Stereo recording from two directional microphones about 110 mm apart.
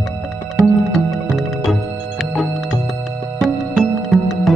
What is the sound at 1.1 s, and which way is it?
Music, centre (ahead or behind).